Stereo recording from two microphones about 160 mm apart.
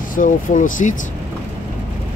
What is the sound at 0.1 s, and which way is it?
Speech, 55° left (ahead or behind).